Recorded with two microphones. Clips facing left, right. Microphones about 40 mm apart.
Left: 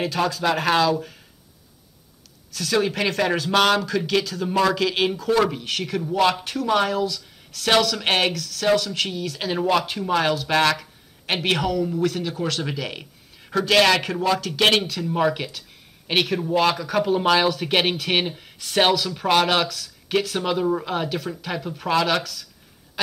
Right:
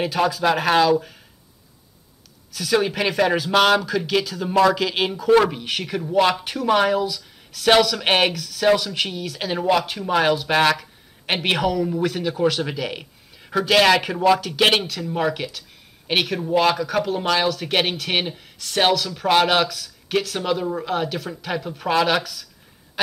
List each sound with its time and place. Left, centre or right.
0.0 s speech: centre
2.5 s speech: centre
17.0 s speech: centre